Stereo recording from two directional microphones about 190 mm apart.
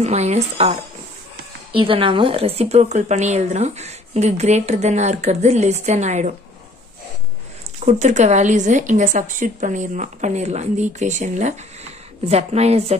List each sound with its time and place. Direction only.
0.0 s speech: 35° right (ahead or behind)
1.8 s speech: 25° right (ahead or behind)
7.8 s speech: 35° right (ahead or behind)